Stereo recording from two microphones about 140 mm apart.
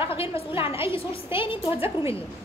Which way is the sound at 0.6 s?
40° left (ahead or behind).